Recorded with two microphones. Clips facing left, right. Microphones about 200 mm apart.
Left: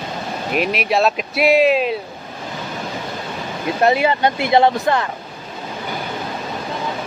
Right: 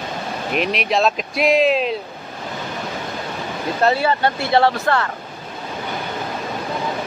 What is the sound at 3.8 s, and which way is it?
Speech, 15° left (ahead or behind).